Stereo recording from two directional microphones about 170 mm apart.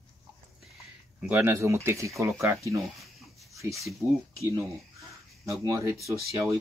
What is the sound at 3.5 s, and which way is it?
Speech, 20° right (ahead or behind).